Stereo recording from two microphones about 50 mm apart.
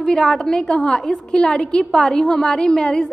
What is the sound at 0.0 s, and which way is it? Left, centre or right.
A woman's voice, centre.